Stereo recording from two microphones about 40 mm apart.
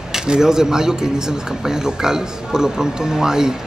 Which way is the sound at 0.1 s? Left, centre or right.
Centre.